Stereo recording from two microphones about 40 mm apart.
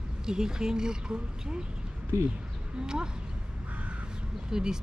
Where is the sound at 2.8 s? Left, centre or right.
Centre.